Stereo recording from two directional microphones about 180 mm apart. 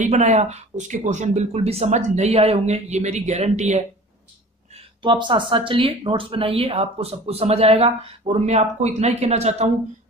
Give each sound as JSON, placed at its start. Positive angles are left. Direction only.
{"t": 0.0, "sound": "speech", "side_deg": -40}
{"t": 5.0, "sound": "speech", "side_deg": -25}